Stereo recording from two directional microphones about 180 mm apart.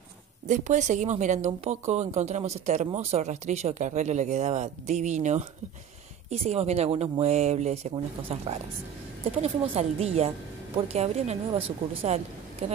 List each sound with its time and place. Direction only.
0.5 s speech: 40° right (ahead or behind)